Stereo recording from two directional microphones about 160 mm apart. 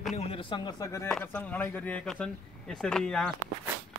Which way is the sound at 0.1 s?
40° left (ahead or behind).